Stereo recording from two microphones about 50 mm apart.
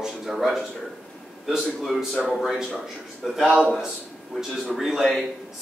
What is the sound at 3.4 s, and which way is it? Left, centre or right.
Speech, right.